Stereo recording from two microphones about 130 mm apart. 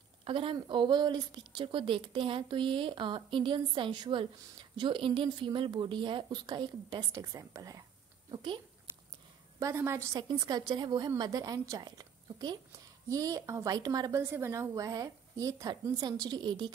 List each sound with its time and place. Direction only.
0.2 s a woman's voice: 45° right (ahead or behind); by 7.8 s 25° right (ahead or behind)
8.3 s speech: 40° right (ahead or behind)
9.6 s a woman's voice: 20° right (ahead or behind)